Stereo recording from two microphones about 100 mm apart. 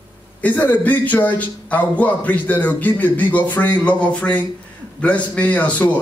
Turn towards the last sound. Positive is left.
turn(degrees=15)  # may be behind; listen again after turning